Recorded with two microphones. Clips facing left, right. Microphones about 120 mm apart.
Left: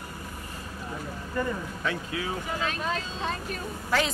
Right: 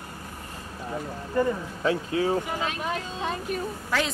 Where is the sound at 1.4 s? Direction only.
30° right (ahead or behind).